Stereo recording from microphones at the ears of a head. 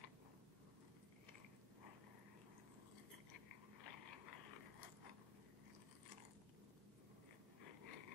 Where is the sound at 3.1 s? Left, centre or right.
Left.